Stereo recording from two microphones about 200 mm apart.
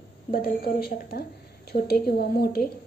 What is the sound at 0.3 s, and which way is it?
A woman's voice, 50° left (ahead or behind).